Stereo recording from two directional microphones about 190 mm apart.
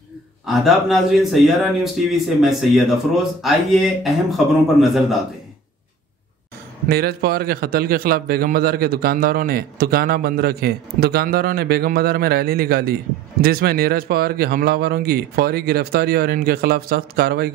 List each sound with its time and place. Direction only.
0.5 s speech: centre (ahead or behind)
6.9 s a man's voice: 55° right (ahead or behind)